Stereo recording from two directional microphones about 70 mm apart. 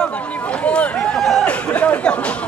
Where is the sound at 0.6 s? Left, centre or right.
Centre.